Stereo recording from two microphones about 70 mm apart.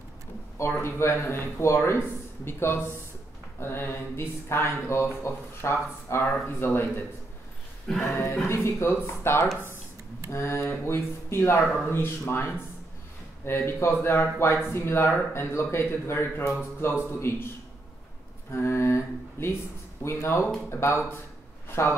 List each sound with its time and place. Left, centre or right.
0.6 s speech: left
7.9 s music: centre
8.5 s speech: left
18.5 s speech: left
21.6 s a sound: left